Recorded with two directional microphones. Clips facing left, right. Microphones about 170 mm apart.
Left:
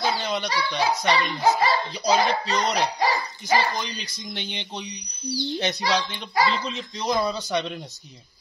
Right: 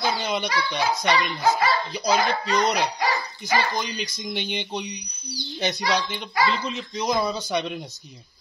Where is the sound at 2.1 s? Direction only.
25° left (ahead or behind).